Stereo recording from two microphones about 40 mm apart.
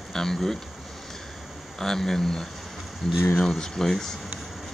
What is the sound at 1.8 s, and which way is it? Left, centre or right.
Speech, centre.